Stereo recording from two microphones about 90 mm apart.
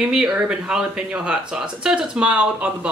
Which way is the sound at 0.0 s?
10° right (ahead or behind).